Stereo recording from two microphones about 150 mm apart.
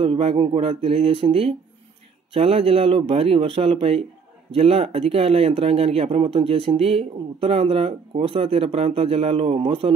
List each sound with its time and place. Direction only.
0.0 s speech: 35° right (ahead or behind)